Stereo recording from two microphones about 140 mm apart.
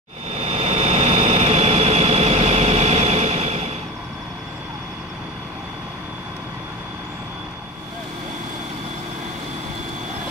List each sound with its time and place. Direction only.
0.4 s vehicle: 50° right (ahead or behind)